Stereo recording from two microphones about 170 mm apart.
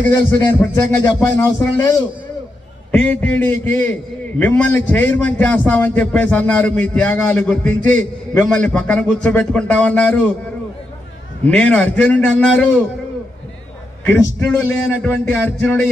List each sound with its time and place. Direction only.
0.4 s a man's voice: 15° left (ahead or behind)
11.4 s a man's voice: 5° left (ahead or behind)
14.2 s a man's voice: 10° left (ahead or behind)